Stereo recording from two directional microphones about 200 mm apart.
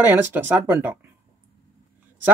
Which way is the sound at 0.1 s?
10° right (ahead or behind).